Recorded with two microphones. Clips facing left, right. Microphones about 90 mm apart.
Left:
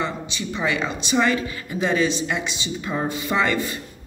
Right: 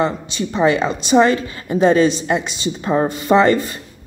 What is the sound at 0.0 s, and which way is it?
A woman's voice, 40° right (ahead or behind).